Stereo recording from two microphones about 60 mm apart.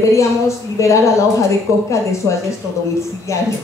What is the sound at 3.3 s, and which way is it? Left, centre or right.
Speech, left.